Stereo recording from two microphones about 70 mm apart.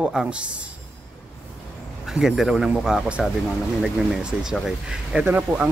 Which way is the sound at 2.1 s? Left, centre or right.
Centre.